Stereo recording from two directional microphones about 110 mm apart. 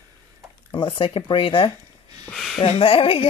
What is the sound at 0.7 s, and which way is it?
Speech, 50° left (ahead or behind).